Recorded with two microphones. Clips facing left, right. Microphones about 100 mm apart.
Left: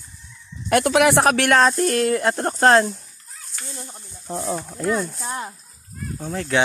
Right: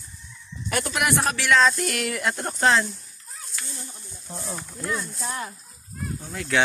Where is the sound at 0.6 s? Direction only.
65° left (ahead or behind).